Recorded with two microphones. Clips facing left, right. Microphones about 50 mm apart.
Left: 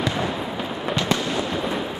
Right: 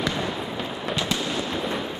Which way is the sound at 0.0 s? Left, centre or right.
Centre.